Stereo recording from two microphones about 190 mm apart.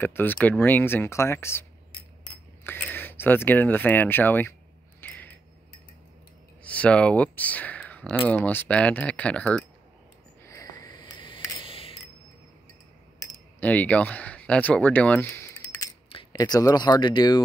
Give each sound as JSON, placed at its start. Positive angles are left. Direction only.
{"t": 0.0, "sound": "speech", "side_deg": 10}
{"t": 2.6, "sound": "speech", "side_deg": 10}
{"t": 5.0, "sound": "a sound", "side_deg": 10}
{"t": 6.6, "sound": "speech", "side_deg": 5}
{"t": 10.4, "sound": "a sound", "side_deg": 15}
{"t": 13.6, "sound": "speech", "side_deg": 10}
{"t": 16.1, "sound": "speech", "side_deg": 25}